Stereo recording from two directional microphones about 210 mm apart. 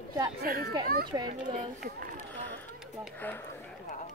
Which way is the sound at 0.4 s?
45° right (ahead or behind).